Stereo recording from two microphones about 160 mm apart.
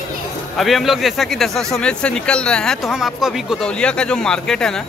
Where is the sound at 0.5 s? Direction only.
Centre (ahead or behind).